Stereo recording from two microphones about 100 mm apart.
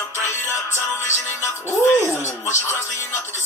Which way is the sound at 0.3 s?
25° left (ahead or behind).